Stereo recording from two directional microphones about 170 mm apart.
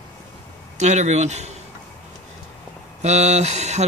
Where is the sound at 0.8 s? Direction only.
45° right (ahead or behind).